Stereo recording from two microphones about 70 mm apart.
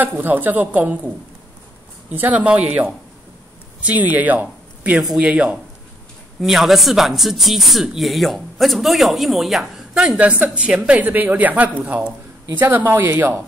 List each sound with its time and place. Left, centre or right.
0.0 s a woman's voice: right
4.9 s speech: centre
5.2 s a woman's voice: centre
6.4 s speech: centre
10.1 s a woman's voice: centre